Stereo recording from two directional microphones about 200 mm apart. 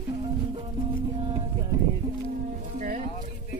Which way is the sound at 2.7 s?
40° right (ahead or behind).